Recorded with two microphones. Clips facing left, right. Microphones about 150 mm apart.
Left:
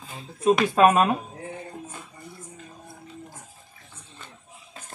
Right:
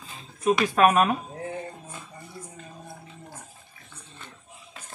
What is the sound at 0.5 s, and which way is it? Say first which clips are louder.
Speech: left 1 dB; 25° left (ahead or behind).